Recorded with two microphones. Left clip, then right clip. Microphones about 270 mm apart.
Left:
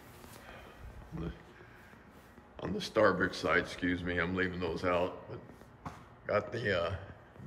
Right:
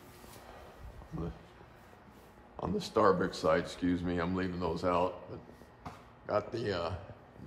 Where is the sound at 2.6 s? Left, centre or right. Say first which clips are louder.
Even; centre.